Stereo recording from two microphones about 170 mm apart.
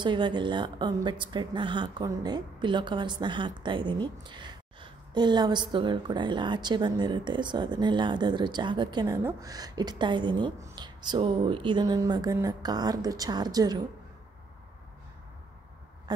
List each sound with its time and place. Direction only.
0.0 s a woman's voice: 25° right (ahead or behind)